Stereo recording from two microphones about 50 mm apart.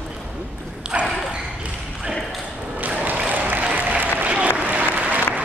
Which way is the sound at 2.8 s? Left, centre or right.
Right.